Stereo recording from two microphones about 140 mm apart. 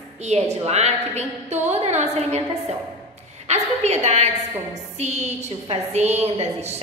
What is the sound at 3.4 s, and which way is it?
A woman's voice, 50° right (ahead or behind).